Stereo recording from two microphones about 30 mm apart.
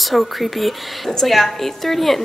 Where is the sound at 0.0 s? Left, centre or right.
Centre.